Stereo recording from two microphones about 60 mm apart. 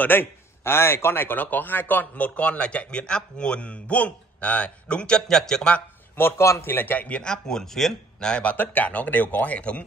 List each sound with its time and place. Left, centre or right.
0.0 s a man's voice: left; by 5.8 s centre
6.3 s a man's voice: left
6.7 s a man's voice: left
7.2 s a man's voice: centre